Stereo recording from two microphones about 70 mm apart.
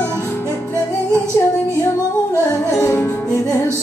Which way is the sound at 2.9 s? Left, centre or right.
Left.